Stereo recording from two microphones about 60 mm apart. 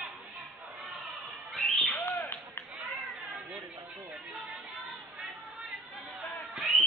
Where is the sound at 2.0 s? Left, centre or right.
Left.